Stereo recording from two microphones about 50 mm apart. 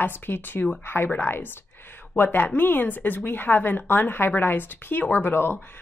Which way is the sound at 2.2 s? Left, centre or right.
Left.